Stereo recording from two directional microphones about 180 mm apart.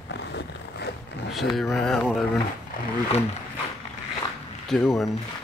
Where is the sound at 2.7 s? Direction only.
50° left (ahead or behind).